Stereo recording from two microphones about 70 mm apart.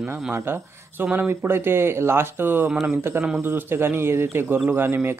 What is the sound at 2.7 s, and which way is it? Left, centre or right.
Speech, centre.